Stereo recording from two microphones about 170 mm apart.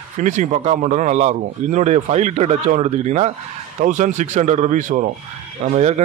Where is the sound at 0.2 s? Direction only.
45° right (ahead or behind).